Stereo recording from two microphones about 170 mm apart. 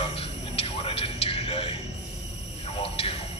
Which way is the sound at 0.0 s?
35° left (ahead or behind).